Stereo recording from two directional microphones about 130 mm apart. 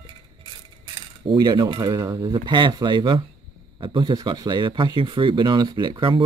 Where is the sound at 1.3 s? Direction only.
30° right (ahead or behind).